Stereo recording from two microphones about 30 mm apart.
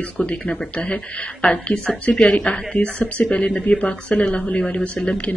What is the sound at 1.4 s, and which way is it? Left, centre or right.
Speech, left.